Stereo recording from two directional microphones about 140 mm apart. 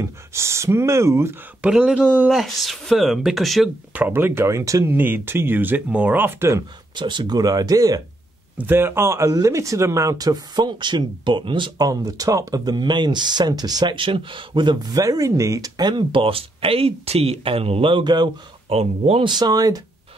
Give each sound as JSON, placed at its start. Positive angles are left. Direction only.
{"t": 0.3, "sound": "speech", "side_deg": -20}
{"t": 1.6, "sound": "speech", "side_deg": -5}
{"t": 3.9, "sound": "speech", "side_deg": -10}
{"t": 7.0, "sound": "speech", "side_deg": -35}
{"t": 8.5, "sound": "speech", "side_deg": -15}
{"t": 18.7, "sound": "speech", "side_deg": -45}
{"t": 19.2, "sound": "speech", "side_deg": -30}